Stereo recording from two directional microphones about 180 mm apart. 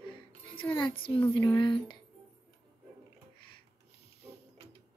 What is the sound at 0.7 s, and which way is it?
Speech, 30° left (ahead or behind).